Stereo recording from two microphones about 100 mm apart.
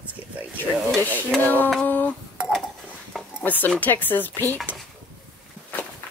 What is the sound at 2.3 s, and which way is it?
Dishes, 10° right (ahead or behind).